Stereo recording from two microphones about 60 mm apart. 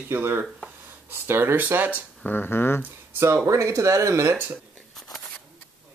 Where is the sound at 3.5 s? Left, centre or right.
Right.